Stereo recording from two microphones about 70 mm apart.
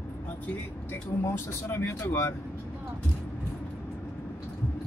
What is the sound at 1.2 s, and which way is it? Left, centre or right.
Speech, left.